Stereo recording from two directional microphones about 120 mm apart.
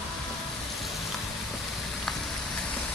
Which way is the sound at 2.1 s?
5° left (ahead or behind).